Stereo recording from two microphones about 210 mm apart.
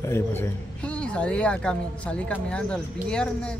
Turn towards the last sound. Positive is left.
turn(degrees=5)  # may be behind; listen again after turning